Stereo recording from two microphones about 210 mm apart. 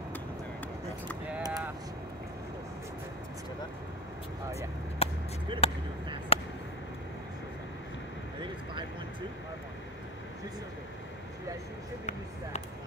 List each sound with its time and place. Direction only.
1.4 s vehicle: 15° right (ahead or behind)
4.6 s vehicle: 30° left (ahead or behind)
5.6 s speech: 25° left (ahead or behind)
6.3 s a sound: 30° left (ahead or behind)